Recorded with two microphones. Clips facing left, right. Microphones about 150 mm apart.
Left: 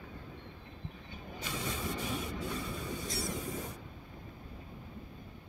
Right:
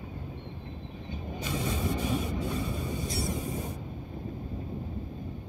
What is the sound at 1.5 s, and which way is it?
Vehicle, 30° right (ahead or behind).